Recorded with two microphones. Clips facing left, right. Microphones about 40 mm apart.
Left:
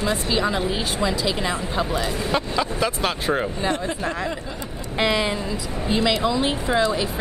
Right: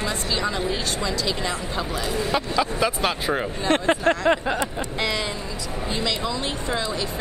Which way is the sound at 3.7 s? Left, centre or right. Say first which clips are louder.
Right 6 dB; right.